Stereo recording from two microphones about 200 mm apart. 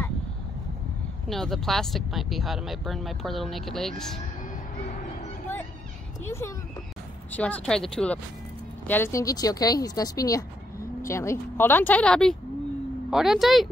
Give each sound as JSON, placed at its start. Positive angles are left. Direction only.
{"t": 1.3, "sound": "speech", "side_deg": 0}
{"t": 6.2, "sound": "speech", "side_deg": 15}